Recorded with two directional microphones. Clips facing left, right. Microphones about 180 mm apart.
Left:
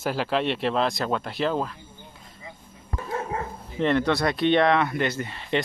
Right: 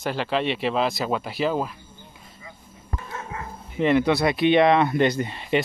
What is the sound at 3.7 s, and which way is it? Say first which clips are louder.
Speech: right 3 dB; 5° right (ahead or behind).